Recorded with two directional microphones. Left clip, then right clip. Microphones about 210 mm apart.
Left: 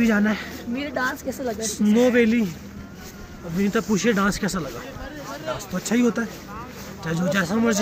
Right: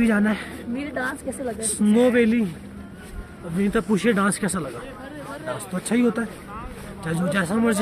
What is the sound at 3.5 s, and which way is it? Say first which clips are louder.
A man's voice: even; 5° right (ahead or behind).